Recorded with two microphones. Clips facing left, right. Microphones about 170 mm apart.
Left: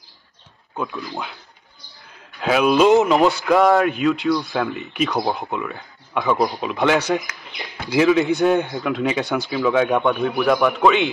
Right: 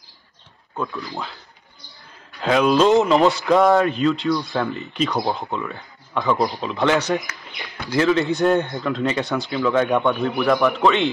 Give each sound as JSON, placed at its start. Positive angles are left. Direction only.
{"t": 1.1, "sound": "a man's voice", "side_deg": 0}
{"t": 6.6, "sound": "speech", "side_deg": 10}
{"t": 7.0, "sound": "speech", "side_deg": 0}